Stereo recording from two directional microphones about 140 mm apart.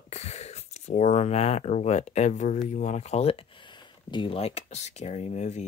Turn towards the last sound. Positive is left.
turn(degrees=55)  # may be behind; listen again after turning